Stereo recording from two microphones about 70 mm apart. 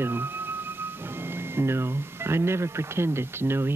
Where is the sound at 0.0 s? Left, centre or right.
Right.